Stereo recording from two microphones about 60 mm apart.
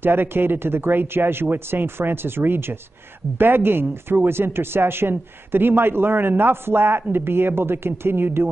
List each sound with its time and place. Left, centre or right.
0.0 s speech: right